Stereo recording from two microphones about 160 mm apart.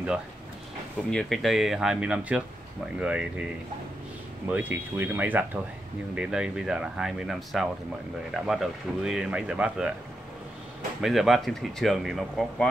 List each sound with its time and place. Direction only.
1.1 s speech: centre (ahead or behind)
4.5 s speech: 10° right (ahead or behind)
11.0 s speech: centre (ahead or behind)